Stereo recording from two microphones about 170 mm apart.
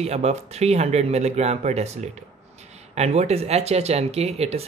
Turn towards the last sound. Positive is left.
turn(degrees=-40)  # may be behind; listen again after turning